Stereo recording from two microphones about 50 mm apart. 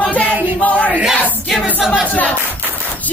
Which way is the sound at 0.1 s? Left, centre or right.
Left.